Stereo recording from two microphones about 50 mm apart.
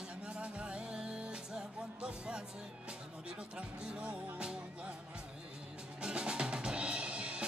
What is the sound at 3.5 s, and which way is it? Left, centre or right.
Music, centre.